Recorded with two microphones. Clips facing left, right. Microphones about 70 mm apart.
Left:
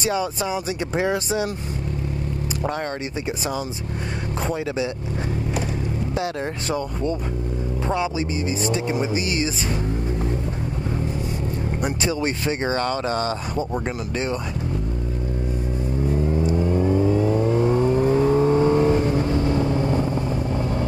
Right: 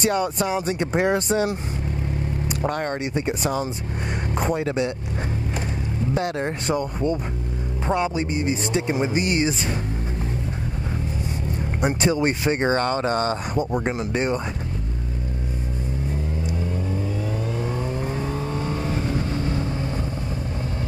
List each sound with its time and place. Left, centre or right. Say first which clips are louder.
0.0 s speech: right 2 dB; centre
2.6 s speech: right 2 dB; centre
6.1 s speech: right 3 dB; centre
7.9 s speech: right 2 dB; centre
12.2 s speech: right 2 dB; centre
16.3 s vehicle: left 7 dB; left